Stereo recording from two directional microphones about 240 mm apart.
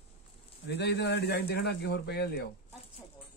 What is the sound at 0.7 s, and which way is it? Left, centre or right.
Speech, left.